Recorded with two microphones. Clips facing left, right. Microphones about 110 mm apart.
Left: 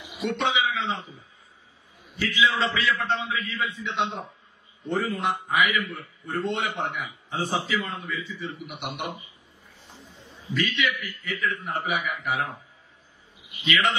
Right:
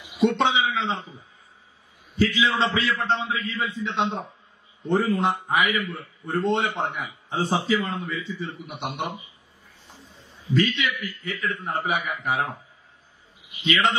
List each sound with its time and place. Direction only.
0.2 s a man's voice: 30° right (ahead or behind)
2.1 s a man's voice: 30° right (ahead or behind)
10.5 s a man's voice: 30° right (ahead or behind)
13.7 s a man's voice: 30° right (ahead or behind)